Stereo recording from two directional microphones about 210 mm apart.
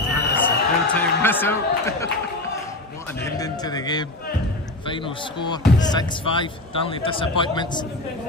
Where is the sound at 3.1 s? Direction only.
15° left (ahead or behind).